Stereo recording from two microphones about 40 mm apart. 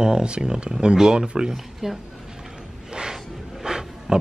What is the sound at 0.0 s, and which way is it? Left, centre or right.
A man's voice, right.